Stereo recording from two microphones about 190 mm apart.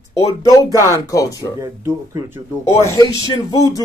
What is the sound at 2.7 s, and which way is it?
Speech, 15° left (ahead or behind).